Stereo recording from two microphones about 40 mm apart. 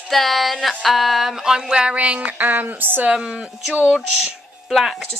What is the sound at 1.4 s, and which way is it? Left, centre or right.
Speech, centre.